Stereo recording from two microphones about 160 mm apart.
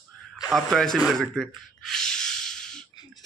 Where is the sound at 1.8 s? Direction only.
5° left (ahead or behind).